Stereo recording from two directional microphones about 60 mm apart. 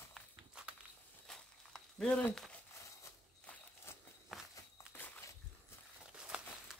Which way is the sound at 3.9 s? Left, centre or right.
Left.